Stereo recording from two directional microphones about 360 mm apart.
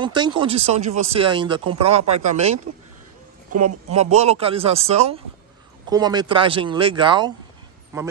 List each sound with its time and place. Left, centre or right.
0.0 s speech: centre